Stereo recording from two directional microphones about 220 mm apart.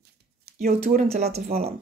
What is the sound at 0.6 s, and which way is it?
Speech, 40° right (ahead or behind).